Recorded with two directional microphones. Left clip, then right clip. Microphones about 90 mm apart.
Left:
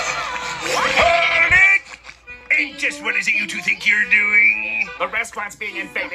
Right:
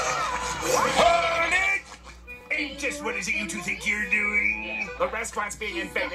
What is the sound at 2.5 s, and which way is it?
Speech, 20° right (ahead or behind).